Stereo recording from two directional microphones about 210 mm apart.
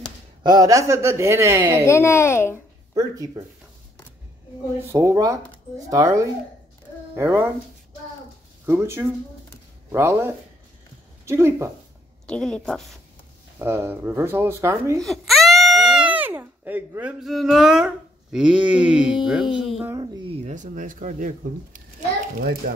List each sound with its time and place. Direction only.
0.4 s speech: 20° right (ahead or behind)
1.9 s a woman's voice: 10° left (ahead or behind)
2.9 s speech: 15° right (ahead or behind)
4.9 s speech: 15° right (ahead or behind)
8.6 s speech: 10° right (ahead or behind)
12.3 s a woman's voice: 5° left (ahead or behind)
13.6 s speech: 10° right (ahead or behind)
15.0 s a woman's voice: centre (ahead or behind)
20.0 s speech: 25° right (ahead or behind)